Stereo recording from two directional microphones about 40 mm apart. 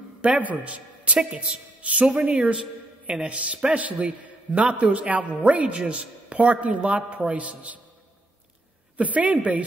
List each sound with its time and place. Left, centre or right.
0.2 s a man's voice: right
8.9 s a man's voice: right